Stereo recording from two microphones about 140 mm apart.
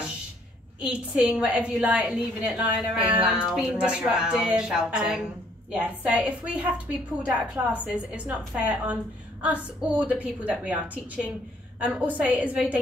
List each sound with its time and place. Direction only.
0.7 s a woman's voice: 10° right (ahead or behind)